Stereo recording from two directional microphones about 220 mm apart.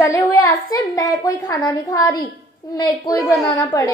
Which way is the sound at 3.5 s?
15° left (ahead or behind).